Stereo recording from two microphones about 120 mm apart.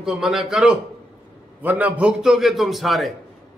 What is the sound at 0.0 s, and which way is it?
Speech, 5° right (ahead or behind).